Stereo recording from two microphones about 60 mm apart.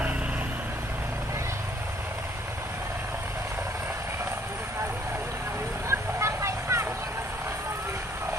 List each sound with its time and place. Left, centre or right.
5.9 s vehicle: right